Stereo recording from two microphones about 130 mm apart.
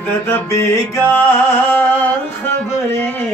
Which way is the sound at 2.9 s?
15° left (ahead or behind).